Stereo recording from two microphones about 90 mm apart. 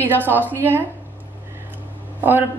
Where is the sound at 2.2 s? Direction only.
20° right (ahead or behind).